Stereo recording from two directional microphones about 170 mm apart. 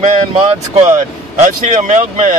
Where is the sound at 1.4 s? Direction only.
45° right (ahead or behind).